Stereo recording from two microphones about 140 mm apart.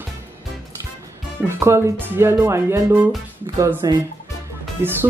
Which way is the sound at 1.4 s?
20° right (ahead or behind).